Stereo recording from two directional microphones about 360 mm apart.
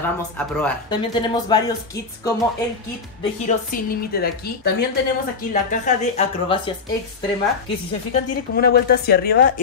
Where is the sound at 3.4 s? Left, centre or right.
Left.